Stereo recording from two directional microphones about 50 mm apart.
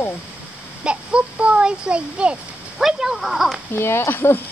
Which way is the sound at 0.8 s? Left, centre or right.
Right.